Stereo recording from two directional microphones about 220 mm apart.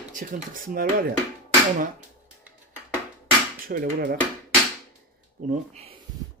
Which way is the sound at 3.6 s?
45° right (ahead or behind).